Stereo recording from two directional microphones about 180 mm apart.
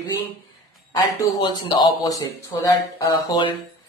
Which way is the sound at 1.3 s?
25° left (ahead or behind).